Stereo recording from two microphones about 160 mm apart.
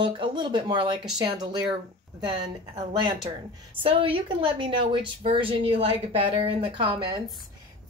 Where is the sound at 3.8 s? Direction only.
35° right (ahead or behind).